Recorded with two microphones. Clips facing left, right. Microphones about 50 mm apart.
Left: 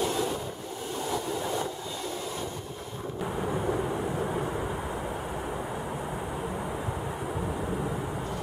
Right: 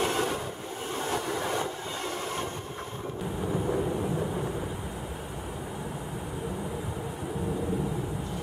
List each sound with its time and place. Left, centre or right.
0.0 s train: right